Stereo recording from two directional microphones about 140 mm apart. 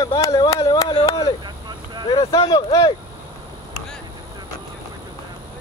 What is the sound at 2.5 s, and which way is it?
Speech, 25° left (ahead or behind).